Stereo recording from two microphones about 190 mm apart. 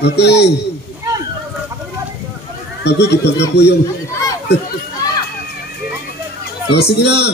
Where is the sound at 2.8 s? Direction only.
60° left (ahead or behind).